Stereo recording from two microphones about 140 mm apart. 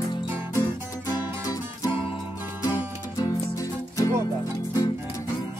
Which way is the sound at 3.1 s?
25° left (ahead or behind).